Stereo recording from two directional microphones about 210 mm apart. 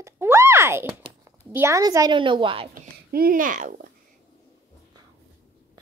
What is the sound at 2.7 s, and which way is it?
A child's voice, 45° right (ahead or behind).